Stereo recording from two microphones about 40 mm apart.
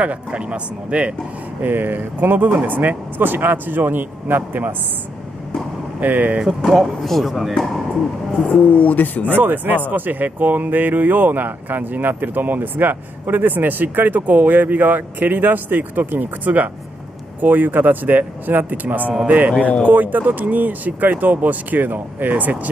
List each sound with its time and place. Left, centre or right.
0.0 s speech: right
1.6 s speech: right
5.9 s speech: right
6.6 s speech: centre
8.5 s speech: left
9.3 s speech: right